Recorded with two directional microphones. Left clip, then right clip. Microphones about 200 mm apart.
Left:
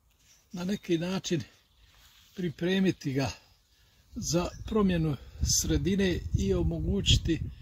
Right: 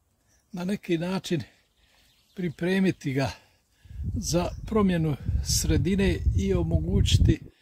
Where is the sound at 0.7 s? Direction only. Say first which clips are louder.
Right 2 dB; 30° right (ahead or behind).